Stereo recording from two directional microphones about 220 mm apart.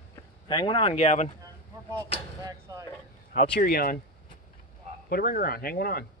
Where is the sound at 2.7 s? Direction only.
15° right (ahead or behind).